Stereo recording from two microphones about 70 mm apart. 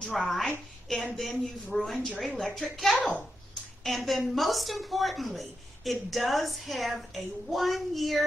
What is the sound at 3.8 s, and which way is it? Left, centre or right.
A woman's voice, centre.